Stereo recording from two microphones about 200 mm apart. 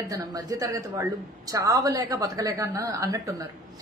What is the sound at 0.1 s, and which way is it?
A woman's voice, 20° right (ahead or behind).